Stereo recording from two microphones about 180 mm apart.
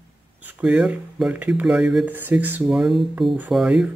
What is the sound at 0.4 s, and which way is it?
Speech, 10° right (ahead or behind).